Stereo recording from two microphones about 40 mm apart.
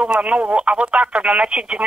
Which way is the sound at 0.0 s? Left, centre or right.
Right.